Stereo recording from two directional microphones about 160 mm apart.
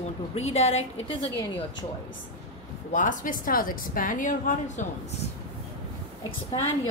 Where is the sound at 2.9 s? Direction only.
55° left (ahead or behind).